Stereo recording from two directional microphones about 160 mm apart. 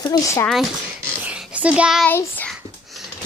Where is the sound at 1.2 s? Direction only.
10° right (ahead or behind).